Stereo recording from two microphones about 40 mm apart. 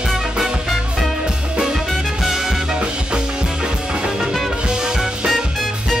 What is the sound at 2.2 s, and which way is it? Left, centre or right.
Swing music, centre.